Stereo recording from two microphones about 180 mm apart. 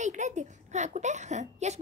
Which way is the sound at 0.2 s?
40° right (ahead or behind).